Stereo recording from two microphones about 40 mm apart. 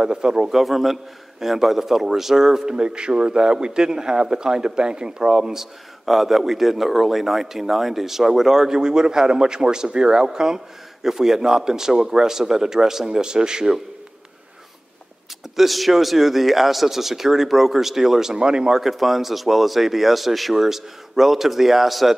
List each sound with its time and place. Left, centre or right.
0.0 s a man's voice: centre
0.6 s a man's voice: centre
2.7 s a man's voice: right
5.6 s a man's voice: centre
15.5 s speech: centre
18.3 s a man's voice: right
18.8 s speech: centre